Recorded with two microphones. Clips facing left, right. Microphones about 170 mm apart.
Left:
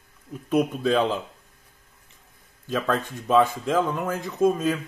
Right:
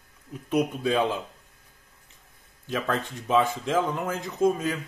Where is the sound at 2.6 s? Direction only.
20° right (ahead or behind).